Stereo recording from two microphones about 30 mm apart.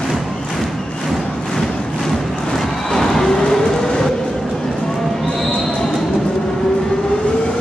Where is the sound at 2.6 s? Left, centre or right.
Centre.